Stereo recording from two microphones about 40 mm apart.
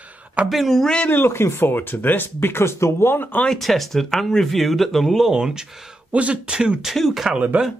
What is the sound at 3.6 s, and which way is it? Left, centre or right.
Speech, centre.